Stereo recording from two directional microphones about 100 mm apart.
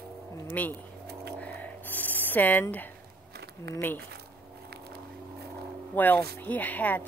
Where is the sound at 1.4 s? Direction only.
15° left (ahead or behind).